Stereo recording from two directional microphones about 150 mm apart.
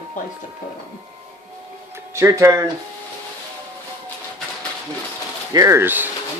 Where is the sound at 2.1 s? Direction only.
20° right (ahead or behind).